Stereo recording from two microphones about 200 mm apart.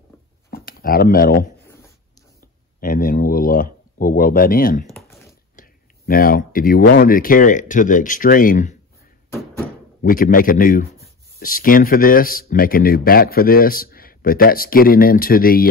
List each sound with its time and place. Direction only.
0.5 s speech: 45° left (ahead or behind)
2.8 s a man's voice: 40° left (ahead or behind)
4.9 s a sound: centre (ahead or behind)
5.6 s a man's voice: 45° left (ahead or behind)
9.6 s a sound: 5° left (ahead or behind)
10.0 s a man's voice: 45° left (ahead or behind)